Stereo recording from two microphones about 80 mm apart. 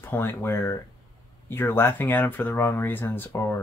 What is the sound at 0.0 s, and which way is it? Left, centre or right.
Speech, left.